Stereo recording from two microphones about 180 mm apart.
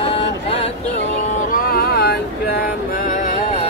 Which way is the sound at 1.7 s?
60° left (ahead or behind).